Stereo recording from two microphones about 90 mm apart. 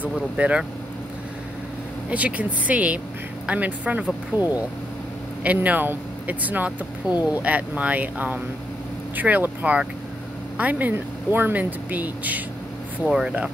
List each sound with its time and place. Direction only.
0.0 s speech: 15° right (ahead or behind)
2.0 s speech: 15° right (ahead or behind)